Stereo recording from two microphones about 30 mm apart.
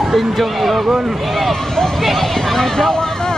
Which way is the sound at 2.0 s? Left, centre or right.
Centre.